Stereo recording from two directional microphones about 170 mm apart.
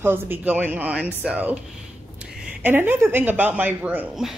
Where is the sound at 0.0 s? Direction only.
15° right (ahead or behind).